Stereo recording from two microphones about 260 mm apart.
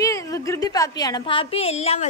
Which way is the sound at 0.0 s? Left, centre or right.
Centre.